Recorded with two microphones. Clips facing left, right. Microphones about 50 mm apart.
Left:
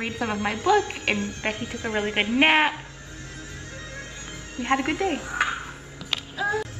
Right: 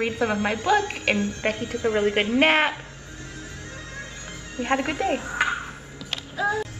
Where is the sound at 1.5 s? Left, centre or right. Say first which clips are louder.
Right 4 dB; left.